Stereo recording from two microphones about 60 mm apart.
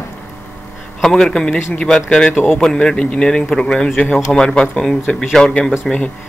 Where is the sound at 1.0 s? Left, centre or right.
Centre.